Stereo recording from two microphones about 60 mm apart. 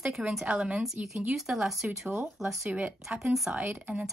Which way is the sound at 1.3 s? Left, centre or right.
Centre.